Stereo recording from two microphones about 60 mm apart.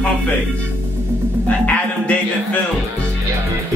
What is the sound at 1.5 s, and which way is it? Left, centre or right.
Speech, left.